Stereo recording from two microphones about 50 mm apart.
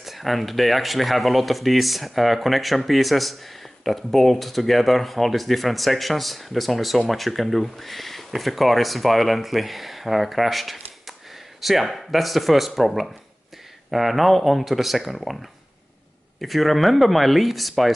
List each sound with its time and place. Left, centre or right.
0.0 s speech: centre
16.3 s speech: centre